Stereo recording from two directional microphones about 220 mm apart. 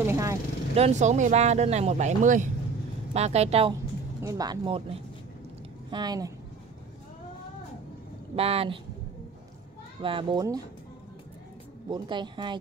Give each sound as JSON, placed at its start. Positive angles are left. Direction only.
{"t": 0.0, "sound": "vehicle", "side_deg": -10}
{"t": 0.7, "sound": "a woman's voice", "side_deg": -30}
{"t": 4.2, "sound": "speech", "side_deg": -15}
{"t": 5.9, "sound": "a woman's voice", "side_deg": -20}
{"t": 8.4, "sound": "a woman's voice", "side_deg": -25}
{"t": 10.0, "sound": "a woman's voice", "side_deg": -20}
{"t": 11.9, "sound": "a woman's voice", "side_deg": -20}